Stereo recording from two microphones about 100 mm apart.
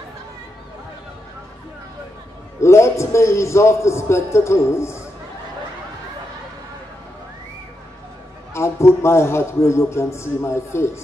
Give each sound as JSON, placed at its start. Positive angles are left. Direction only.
{"t": 2.6, "sound": "a man's voice", "side_deg": 30}
{"t": 8.5, "sound": "a man's voice", "side_deg": 30}